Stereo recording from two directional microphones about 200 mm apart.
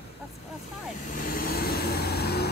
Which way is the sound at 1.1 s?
45° left (ahead or behind).